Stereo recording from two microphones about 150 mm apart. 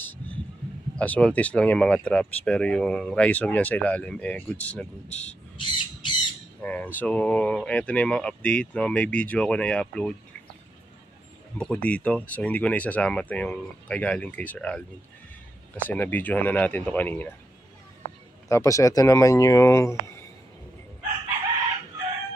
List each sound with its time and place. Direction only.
0.9 s speech: 10° left (ahead or behind)
5.6 s crow: 30° left (ahead or behind)
6.6 s speech: 10° left (ahead or behind)
11.5 s speech: 5° left (ahead or behind)
18.5 s speech: 20° left (ahead or behind)